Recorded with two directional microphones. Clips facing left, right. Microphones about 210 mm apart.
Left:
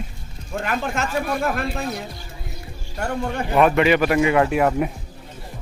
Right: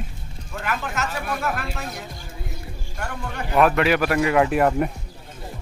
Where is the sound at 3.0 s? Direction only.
25° left (ahead or behind).